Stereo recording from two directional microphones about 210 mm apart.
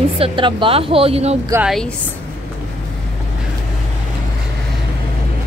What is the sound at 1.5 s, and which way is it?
Speech, 5° right (ahead or behind).